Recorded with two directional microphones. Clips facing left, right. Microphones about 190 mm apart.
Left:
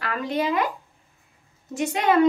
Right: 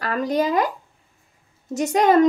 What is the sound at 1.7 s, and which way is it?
Speech, 40° right (ahead or behind).